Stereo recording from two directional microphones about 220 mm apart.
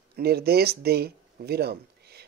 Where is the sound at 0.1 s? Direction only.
45° right (ahead or behind).